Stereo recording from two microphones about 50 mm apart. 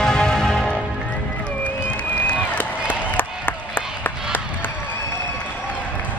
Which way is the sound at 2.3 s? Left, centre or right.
Left.